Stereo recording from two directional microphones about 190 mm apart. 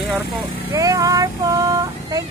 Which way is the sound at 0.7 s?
20° right (ahead or behind).